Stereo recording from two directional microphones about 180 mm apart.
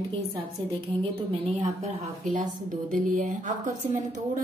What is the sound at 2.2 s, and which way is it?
A woman's voice, 45° right (ahead or behind).